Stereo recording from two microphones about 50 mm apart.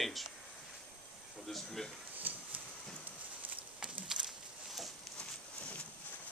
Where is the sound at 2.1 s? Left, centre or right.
Right.